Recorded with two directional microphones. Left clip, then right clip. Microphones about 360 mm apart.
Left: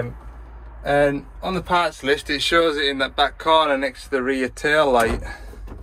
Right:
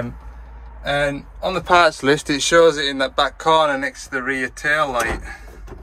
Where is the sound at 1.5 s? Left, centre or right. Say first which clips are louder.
Right 6 dB; right.